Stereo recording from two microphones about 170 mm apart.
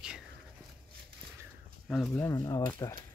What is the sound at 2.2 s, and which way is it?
Speech, 15° left (ahead or behind).